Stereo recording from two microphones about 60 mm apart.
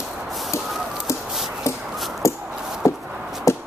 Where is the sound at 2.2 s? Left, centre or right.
Left.